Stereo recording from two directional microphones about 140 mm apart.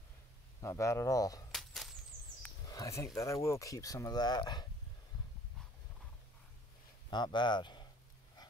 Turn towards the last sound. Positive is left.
turn(degrees=30)  # may be behind; listen again after turning